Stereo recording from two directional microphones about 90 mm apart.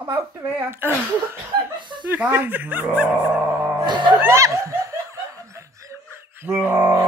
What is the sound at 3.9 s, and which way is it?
Music, 55° right (ahead or behind).